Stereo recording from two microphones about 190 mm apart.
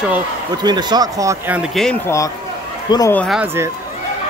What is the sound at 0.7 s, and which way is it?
Speech, 20° right (ahead or behind).